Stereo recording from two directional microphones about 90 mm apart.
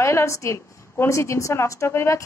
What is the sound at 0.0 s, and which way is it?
A woman's voice, 30° left (ahead or behind).